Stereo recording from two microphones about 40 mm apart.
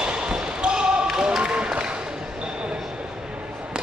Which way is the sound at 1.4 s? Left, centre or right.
Right.